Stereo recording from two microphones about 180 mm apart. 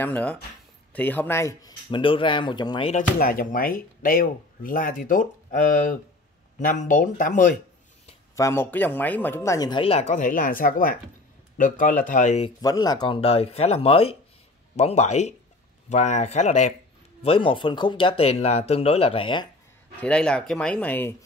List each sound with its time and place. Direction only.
0.0 s speech: 10° left (ahead or behind); by 2.9 s 25° left (ahead or behind)
2.9 s speech: 50° left (ahead or behind)
8.4 s speech: 15° left (ahead or behind); by 12.4 s 40° left (ahead or behind)
12.4 s speech: 20° left (ahead or behind); by 16.7 s 40° left (ahead or behind)
17.2 s speech: 30° left (ahead or behind)
20.0 s speech: 5° left (ahead or behind)